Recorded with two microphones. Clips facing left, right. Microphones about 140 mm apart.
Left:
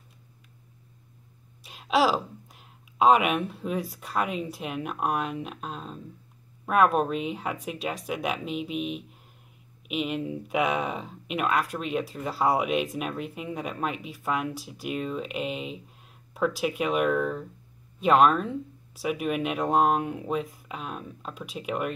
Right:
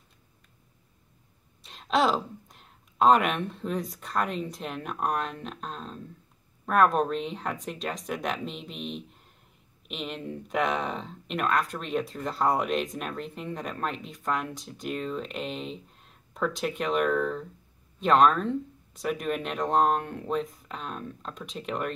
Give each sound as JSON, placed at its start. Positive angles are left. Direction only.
{"t": 1.6, "sound": "speech", "side_deg": 5}